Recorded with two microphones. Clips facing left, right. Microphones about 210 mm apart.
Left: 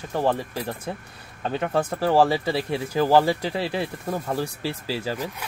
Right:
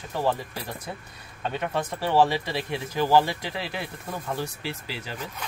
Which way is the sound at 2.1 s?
35° left (ahead or behind).